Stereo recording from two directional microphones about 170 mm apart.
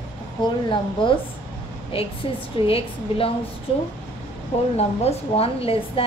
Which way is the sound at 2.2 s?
30° left (ahead or behind).